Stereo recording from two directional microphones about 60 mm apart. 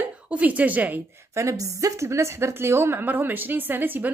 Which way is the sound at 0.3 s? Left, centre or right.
Right.